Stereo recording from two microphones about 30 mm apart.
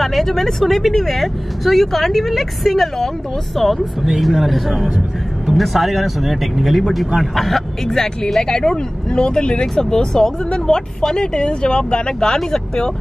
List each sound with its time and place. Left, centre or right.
0.0 s speech: centre
4.0 s speech: centre
7.9 s speech: centre
9.1 s speech: left